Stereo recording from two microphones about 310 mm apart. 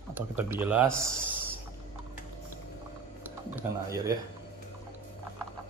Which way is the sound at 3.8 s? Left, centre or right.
Centre.